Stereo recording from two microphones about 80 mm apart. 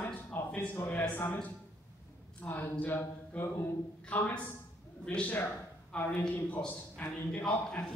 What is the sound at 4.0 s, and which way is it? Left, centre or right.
A woman's voice, centre.